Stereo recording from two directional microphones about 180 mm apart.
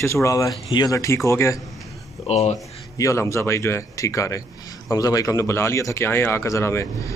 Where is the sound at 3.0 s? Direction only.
15° left (ahead or behind).